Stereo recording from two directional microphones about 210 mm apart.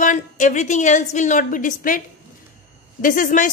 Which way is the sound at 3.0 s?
40° left (ahead or behind).